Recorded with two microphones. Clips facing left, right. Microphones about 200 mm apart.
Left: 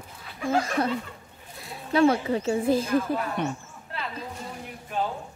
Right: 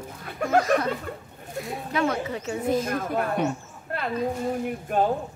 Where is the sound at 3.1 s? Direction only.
55° right (ahead or behind).